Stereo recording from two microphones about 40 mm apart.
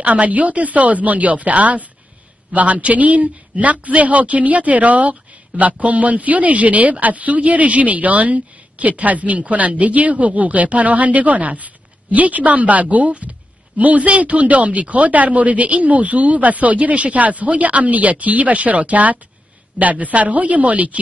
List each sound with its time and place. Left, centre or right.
0.0 s a man's voice: right